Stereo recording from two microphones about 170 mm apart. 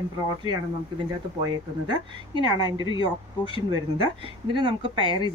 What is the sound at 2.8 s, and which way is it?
Speech, 30° left (ahead or behind).